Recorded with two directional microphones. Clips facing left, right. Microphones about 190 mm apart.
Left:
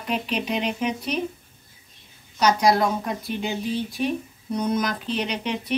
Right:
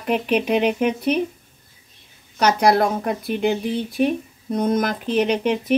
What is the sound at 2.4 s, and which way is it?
Speech, 60° right (ahead or behind).